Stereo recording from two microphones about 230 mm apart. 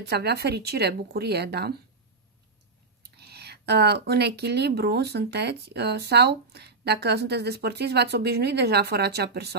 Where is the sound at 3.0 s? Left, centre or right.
Right.